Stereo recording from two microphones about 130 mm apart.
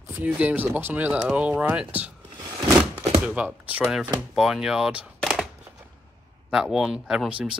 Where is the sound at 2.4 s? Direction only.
30° right (ahead or behind).